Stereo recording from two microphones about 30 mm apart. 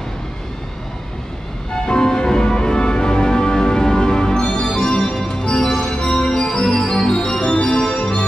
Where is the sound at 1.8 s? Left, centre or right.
Left.